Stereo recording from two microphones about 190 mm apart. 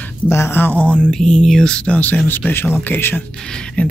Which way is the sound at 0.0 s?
10° left (ahead or behind).